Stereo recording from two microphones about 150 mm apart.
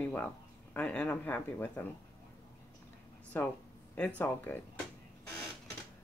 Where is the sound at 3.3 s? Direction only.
10° left (ahead or behind).